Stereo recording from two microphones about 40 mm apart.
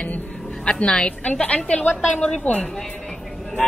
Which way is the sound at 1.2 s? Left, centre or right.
Left.